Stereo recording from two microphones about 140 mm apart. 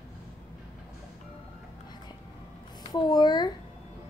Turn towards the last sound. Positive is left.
turn(degrees=30)  # may be behind; listen again after turning